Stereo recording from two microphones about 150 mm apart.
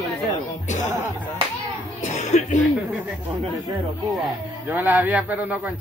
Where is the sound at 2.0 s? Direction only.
55° left (ahead or behind).